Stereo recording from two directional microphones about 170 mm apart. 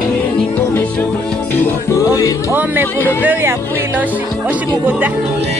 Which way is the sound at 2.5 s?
10° right (ahead or behind).